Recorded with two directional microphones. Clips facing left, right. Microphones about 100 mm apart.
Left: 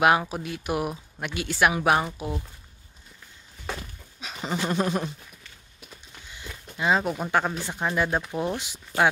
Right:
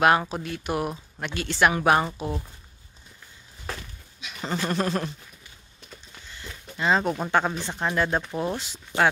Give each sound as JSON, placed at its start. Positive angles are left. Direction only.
{"t": 0.3, "sound": "speech", "side_deg": 10}
{"t": 4.4, "sound": "speech", "side_deg": 15}